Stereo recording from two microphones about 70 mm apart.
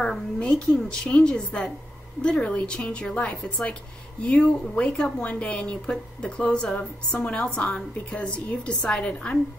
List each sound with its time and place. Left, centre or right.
0.0 s speech: centre